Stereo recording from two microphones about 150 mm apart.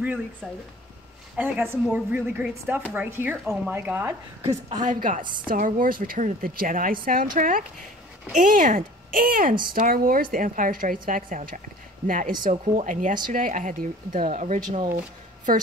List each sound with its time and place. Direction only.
1.3 s speech: 10° right (ahead or behind)
4.6 s a woman's voice: 55° right (ahead or behind)
5.5 s a woman's voice: 70° right (ahead or behind)